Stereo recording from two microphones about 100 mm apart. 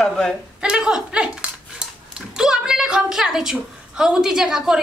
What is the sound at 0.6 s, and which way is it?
A man's voice, 10° right (ahead or behind).